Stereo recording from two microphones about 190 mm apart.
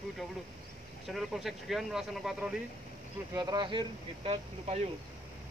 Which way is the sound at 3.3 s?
20° right (ahead or behind).